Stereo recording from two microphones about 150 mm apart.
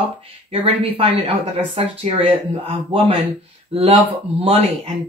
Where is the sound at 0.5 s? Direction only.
40° right (ahead or behind).